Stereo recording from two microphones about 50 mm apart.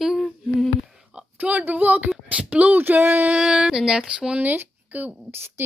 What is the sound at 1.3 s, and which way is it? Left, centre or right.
Speech, right.